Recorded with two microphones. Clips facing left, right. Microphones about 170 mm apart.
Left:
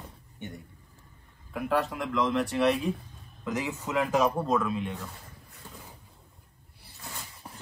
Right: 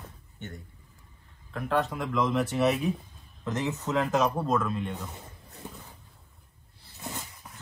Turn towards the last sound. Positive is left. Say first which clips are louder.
# left 3 dB
turn(degrees=30)  # may be behind; listen again after turning